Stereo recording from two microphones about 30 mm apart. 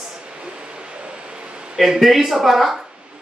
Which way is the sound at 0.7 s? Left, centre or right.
Right.